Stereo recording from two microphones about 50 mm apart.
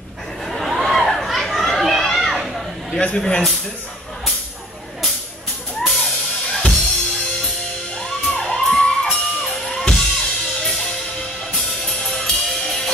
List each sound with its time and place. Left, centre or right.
0.5 s children playing: centre
3.2 s speech: centre
5.9 s music: centre
8.5 s music: centre
9.9 s drum kit: centre
11.5 s music: centre